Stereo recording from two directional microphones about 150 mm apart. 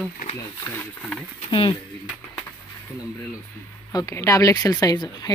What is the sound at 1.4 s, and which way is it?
Speech, 35° left (ahead or behind).